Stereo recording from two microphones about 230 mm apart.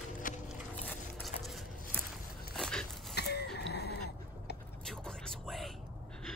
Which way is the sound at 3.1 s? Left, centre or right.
Left.